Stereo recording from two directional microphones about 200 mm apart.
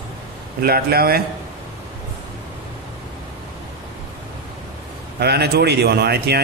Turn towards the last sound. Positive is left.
turn(degrees=-55)  # may be behind; listen again after turning